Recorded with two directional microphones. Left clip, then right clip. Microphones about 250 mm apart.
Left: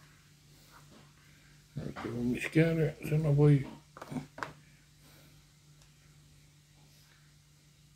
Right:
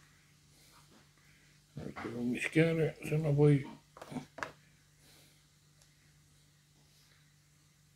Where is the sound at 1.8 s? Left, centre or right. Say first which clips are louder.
Left 3 dB; centre.